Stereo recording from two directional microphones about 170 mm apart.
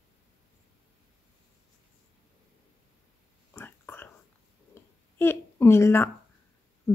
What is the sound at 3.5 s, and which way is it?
Whispering, 15° left (ahead or behind).